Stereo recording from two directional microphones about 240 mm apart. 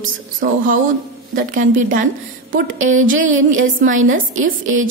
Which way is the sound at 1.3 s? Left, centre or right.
Right.